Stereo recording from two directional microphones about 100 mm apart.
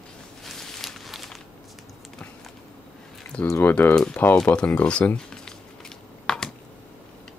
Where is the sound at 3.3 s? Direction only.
10° left (ahead or behind).